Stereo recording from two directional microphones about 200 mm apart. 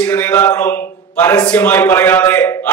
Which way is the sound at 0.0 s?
5° left (ahead or behind).